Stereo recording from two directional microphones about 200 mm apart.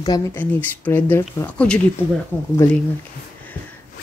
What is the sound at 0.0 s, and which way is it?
Speech, 20° left (ahead or behind).